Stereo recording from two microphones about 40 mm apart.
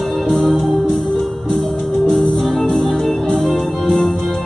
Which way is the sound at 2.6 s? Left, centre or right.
Centre.